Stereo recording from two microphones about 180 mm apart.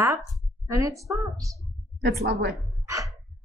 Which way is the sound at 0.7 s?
20° right (ahead or behind).